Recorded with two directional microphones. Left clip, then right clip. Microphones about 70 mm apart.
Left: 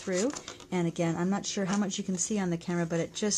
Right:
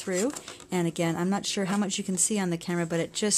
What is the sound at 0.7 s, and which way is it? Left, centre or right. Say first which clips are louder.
Speech: right 3 dB; right.